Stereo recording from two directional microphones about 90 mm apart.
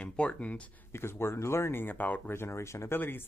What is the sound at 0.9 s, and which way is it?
Speech, 25° left (ahead or behind).